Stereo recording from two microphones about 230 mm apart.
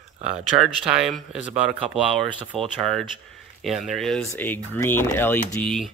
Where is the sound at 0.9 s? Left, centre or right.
Centre.